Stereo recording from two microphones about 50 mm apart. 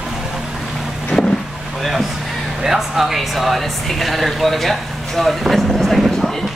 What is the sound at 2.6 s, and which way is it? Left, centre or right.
Speech, centre.